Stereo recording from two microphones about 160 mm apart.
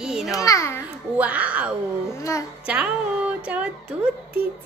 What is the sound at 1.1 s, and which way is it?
Speech, 10° right (ahead or behind).